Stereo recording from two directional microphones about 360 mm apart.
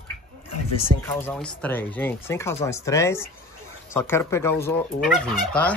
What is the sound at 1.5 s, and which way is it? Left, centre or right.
Speech, centre.